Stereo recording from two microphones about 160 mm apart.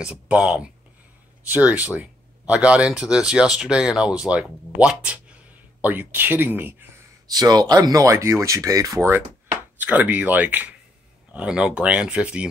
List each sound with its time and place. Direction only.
0.0 s speech: 5° right (ahead or behind)
7.2 s speech: 25° right (ahead or behind); by 12.4 s 5° right (ahead or behind)